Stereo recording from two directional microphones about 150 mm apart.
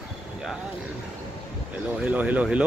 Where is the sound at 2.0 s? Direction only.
10° right (ahead or behind).